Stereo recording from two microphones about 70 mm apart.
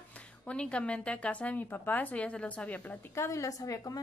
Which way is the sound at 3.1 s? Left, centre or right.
Left.